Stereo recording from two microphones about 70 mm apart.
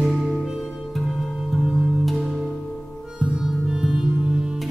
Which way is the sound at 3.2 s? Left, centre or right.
Centre.